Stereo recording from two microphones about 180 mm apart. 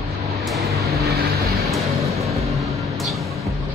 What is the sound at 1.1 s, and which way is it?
Vehicle, 60° right (ahead or behind).